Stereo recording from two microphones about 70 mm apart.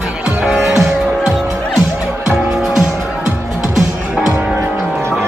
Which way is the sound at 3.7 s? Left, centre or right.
Centre.